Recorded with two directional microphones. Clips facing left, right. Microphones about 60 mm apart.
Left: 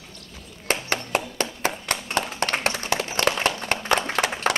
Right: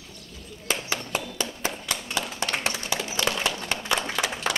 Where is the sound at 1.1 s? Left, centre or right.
Left.